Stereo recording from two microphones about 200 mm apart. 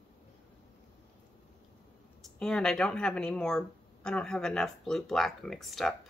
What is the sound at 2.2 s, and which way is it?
Speech, 5° left (ahead or behind).